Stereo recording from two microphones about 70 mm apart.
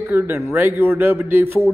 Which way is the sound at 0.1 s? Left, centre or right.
Right.